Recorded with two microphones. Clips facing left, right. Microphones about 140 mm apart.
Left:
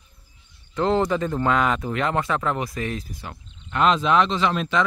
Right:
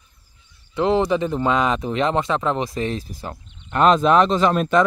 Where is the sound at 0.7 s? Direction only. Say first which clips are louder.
Right 2 dB; 15° right (ahead or behind).